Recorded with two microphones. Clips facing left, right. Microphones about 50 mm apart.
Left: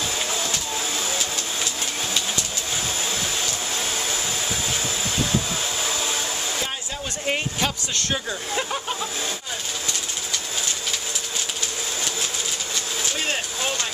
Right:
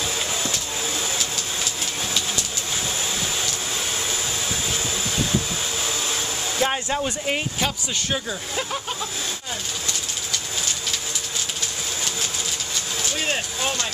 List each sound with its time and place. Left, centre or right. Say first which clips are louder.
0.3 s vehicle: even; centre
5.9 s hair dryer: left 1 dB; centre
6.6 s a sound: right 7 dB; right
7.2 s speech: even; centre